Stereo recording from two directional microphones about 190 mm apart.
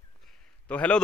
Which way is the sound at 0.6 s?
5° left (ahead or behind).